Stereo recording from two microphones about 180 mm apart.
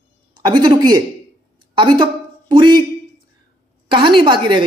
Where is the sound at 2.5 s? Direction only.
25° right (ahead or behind).